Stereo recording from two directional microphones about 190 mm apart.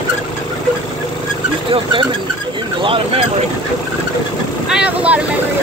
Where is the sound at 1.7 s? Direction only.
25° right (ahead or behind).